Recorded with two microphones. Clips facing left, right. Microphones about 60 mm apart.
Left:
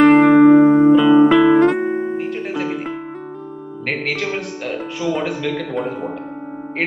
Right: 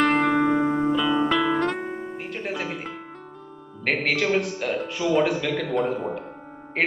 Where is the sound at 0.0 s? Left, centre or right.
Centre.